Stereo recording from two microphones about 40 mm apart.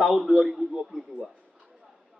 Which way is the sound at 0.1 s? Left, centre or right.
Centre.